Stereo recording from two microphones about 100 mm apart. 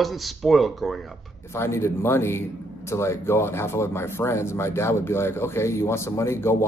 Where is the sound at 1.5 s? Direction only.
25° left (ahead or behind).